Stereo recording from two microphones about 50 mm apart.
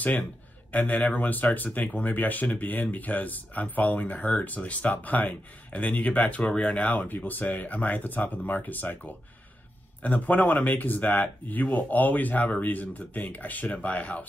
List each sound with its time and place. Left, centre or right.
0.7 s speech: left
6.9 s speech: left